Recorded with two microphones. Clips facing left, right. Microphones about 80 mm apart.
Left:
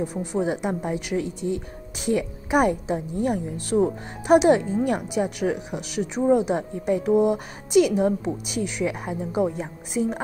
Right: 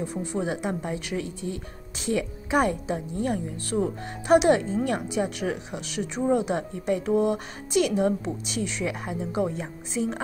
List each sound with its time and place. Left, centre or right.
0.0 s a woman's voice: centre
0.9 s speech: centre